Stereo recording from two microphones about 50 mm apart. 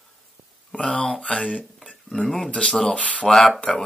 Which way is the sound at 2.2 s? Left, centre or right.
Centre.